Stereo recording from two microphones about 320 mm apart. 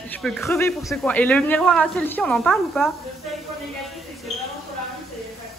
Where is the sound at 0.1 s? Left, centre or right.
Centre.